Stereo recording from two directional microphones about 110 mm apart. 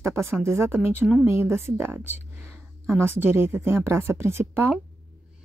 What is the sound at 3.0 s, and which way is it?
Speech, 20° right (ahead or behind).